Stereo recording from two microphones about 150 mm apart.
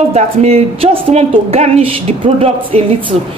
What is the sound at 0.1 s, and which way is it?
A woman's voice, 45° right (ahead or behind).